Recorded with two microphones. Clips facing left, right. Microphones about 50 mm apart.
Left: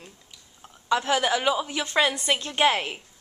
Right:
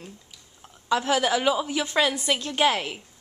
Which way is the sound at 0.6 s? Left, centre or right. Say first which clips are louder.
Even; centre.